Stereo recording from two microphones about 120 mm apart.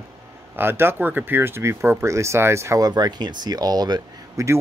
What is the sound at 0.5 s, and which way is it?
Speech, 20° right (ahead or behind).